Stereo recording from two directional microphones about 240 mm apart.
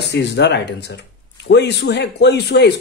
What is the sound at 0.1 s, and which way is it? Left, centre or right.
Speech, left.